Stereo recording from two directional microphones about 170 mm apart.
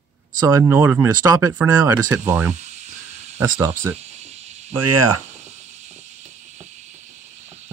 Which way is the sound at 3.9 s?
40° right (ahead or behind).